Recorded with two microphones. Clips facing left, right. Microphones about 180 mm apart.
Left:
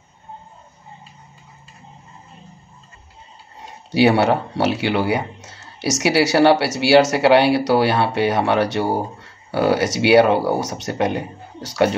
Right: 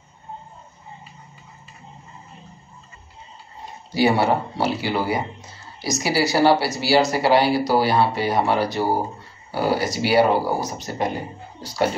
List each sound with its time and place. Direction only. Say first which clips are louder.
3.9 s speech: left 3 dB; 75° left (ahead or behind)